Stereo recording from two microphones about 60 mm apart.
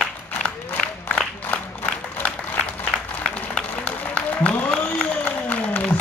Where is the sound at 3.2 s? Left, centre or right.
Left.